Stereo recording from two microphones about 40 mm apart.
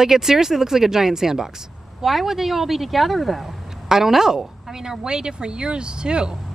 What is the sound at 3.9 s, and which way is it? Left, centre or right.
A woman's voice, centre.